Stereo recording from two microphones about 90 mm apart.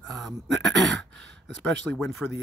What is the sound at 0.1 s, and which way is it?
Speech, centre (ahead or behind).